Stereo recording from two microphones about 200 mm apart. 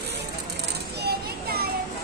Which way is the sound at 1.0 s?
50° right (ahead or behind).